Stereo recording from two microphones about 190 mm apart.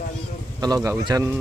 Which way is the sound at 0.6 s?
15° right (ahead or behind).